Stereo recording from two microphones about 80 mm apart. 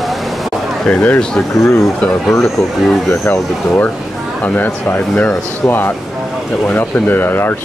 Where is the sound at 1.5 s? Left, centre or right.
Left.